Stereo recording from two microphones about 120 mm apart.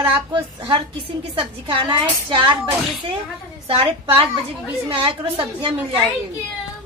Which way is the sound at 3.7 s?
50° right (ahead or behind).